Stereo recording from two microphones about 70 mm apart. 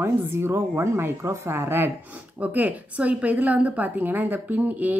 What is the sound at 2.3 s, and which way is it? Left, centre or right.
Speech, right.